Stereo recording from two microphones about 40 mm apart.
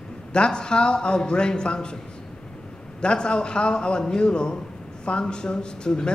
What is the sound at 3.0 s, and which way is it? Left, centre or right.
A man's voice, left.